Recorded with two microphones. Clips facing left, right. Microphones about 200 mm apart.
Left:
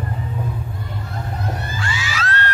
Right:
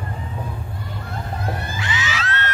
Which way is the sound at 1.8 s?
20° right (ahead or behind).